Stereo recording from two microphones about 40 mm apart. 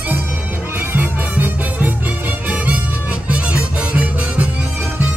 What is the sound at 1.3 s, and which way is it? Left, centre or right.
Music, right.